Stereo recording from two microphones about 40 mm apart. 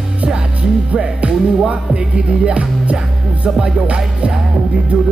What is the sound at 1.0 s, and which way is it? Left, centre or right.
Music, right.